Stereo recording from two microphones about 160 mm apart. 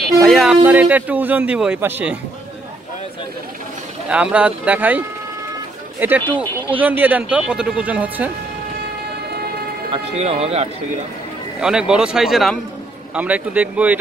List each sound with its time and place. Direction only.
0.2 s a sound: centre (ahead or behind)
0.6 s speech: 10° right (ahead or behind)
4.1 s speech: 10° right (ahead or behind)
10.1 s speech: 40° right (ahead or behind)
11.6 s speech: 5° right (ahead or behind)